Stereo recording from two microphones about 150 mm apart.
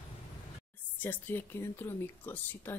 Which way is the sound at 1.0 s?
10° left (ahead or behind).